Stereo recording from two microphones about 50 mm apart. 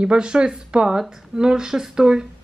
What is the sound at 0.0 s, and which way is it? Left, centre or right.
A woman's voice, centre.